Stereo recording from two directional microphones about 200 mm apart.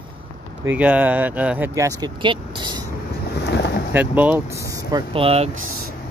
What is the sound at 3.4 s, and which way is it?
Boat, 55° left (ahead or behind).